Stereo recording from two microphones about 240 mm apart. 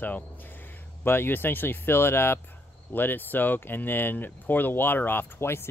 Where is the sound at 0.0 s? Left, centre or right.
Centre.